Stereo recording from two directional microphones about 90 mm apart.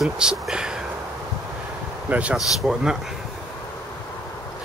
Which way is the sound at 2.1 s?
15° right (ahead or behind).